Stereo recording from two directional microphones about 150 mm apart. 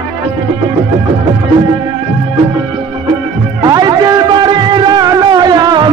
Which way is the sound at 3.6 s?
25° right (ahead or behind).